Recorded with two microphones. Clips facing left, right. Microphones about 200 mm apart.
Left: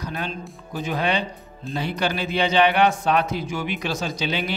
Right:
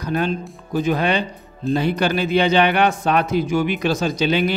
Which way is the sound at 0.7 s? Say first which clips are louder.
Right 5 dB; 50° right (ahead or behind).